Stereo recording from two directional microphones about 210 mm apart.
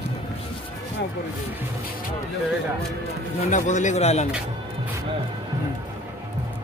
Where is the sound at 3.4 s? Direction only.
35° left (ahead or behind).